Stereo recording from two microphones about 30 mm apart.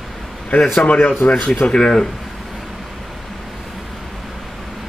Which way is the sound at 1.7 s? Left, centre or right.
Left.